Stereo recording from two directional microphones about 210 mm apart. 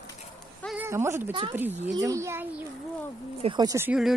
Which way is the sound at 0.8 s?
10° right (ahead or behind).